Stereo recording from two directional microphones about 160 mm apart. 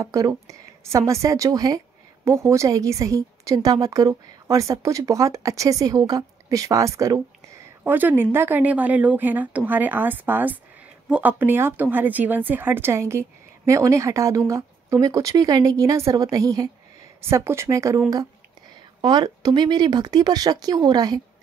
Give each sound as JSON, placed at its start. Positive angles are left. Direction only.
{"t": 0.0, "sound": "a woman's voice", "side_deg": -20}